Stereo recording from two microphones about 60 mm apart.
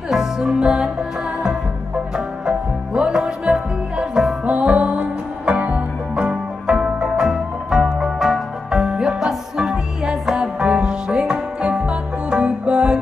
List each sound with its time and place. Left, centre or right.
0.1 s music: centre
2.1 s music: centre